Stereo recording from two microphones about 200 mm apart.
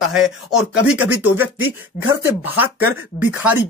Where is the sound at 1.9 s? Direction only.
40° left (ahead or behind).